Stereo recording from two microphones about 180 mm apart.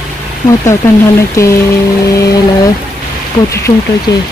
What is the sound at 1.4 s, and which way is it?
Speech, 15° left (ahead or behind).